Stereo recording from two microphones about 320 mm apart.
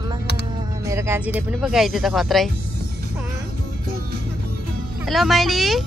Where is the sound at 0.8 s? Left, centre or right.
Centre.